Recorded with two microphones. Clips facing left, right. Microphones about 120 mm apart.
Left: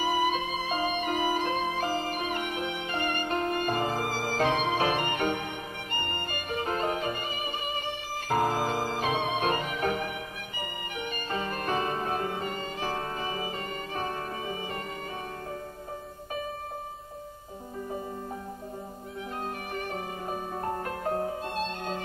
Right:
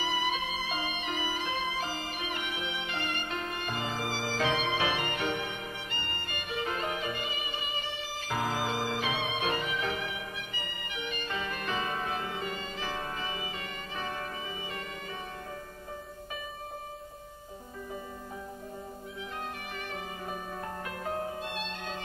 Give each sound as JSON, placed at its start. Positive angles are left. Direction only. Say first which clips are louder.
{"t": 0.0, "sound": "music", "louder": "left 5 dB", "side_deg": 45}
{"t": 19.7, "sound": "music", "louder": "left 5 dB", "side_deg": 40}